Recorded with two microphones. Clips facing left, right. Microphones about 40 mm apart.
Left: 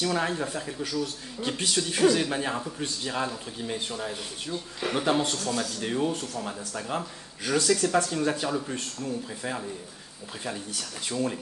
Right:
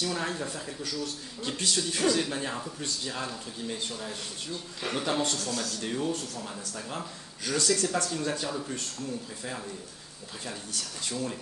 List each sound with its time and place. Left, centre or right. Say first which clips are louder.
0.0 s speech: left 4 dB; centre
10.4 s speech: left 3 dB; centre